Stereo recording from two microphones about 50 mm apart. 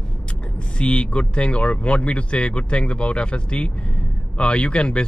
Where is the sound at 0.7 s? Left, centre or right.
Left.